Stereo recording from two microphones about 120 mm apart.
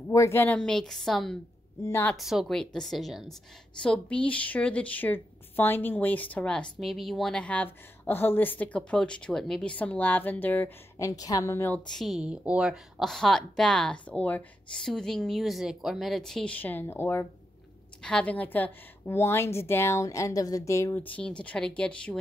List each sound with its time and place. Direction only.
0.1 s a woman's voice: 20° left (ahead or behind)
0.6 s a woman's voice: 5° left (ahead or behind)
1.8 s a woman's voice: 25° left (ahead or behind)
2.1 s a woman's voice: centre (ahead or behind); by 10.7 s 15° left (ahead or behind)
11.0 s a woman's voice: 30° left (ahead or behind)
11.8 s a woman's voice: 5° left (ahead or behind); by 17.3 s 20° left (ahead or behind)
18.0 s a woman's voice: 10° left (ahead or behind); by 21.0 s 25° left (ahead or behind)
21.0 s a woman's voice: 10° left (ahead or behind)